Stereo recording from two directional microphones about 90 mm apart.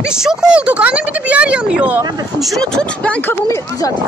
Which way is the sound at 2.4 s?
5° left (ahead or behind).